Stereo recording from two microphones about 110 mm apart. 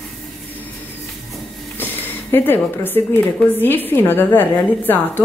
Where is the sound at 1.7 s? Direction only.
20° left (ahead or behind).